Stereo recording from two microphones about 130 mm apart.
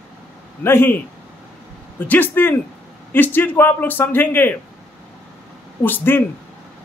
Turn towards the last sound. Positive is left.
turn(degrees=15)  # may be behind; listen again after turning